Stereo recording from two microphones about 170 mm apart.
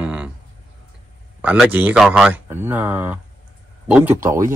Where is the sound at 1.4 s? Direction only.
5° right (ahead or behind).